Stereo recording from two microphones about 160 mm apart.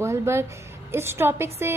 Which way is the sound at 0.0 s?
15° right (ahead or behind).